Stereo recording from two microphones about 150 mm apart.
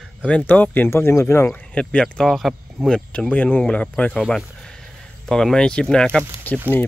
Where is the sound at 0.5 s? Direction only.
10° left (ahead or behind).